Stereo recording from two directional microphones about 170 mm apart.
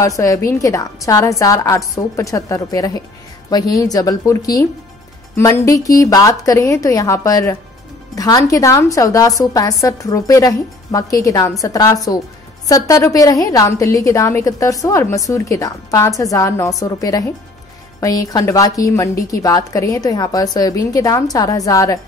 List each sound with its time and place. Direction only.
0.0 s a woman's voice: 20° left (ahead or behind)